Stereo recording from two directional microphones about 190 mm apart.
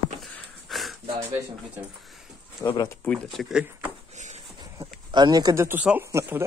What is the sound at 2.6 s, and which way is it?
Speech, 15° left (ahead or behind).